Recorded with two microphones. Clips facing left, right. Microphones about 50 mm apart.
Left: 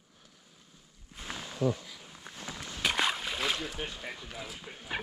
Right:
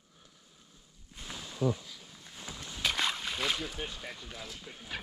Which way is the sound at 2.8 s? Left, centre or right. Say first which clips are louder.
Left 2 dB; centre.